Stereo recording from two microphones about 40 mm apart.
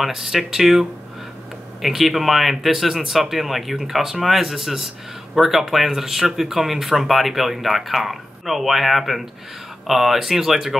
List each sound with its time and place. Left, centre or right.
0.0 s speech: centre